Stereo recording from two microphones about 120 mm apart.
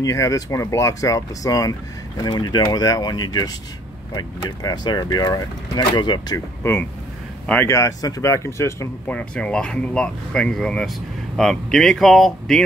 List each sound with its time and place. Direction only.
0.0 s speech: 25° left (ahead or behind)
6.6 s speech: 20° left (ahead or behind)
9.0 s speech: 10° left (ahead or behind)